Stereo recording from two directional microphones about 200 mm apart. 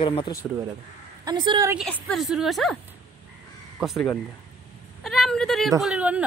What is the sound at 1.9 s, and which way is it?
Speech, 5° left (ahead or behind).